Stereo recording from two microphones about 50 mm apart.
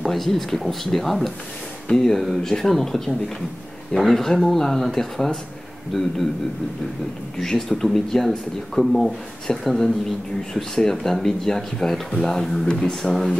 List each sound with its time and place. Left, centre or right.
0.0 s speech: centre
7.3 s speech: centre